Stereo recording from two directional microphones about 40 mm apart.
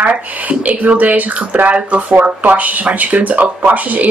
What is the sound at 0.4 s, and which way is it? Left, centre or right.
Speech, right.